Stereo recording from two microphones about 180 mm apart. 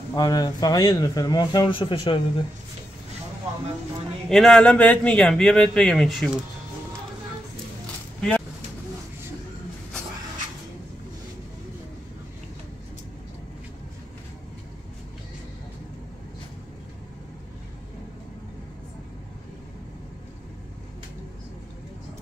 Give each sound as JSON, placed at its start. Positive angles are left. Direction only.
{"t": 0.1, "sound": "a man's voice", "side_deg": 20}
{"t": 4.3, "sound": "speech", "side_deg": 0}
{"t": 8.2, "sound": "vehicle", "side_deg": 5}